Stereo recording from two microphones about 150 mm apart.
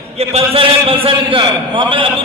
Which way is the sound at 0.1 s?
45° right (ahead or behind).